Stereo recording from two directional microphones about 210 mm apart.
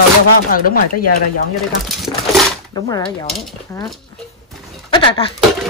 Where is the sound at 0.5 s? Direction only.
45° left (ahead or behind).